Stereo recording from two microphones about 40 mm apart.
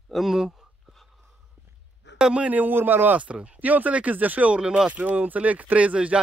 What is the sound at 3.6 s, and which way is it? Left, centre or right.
Speech, right.